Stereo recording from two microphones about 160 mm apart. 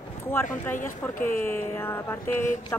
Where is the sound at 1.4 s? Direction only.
15° left (ahead or behind).